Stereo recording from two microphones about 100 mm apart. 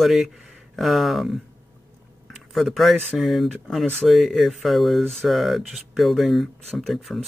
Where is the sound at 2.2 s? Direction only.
Centre (ahead or behind).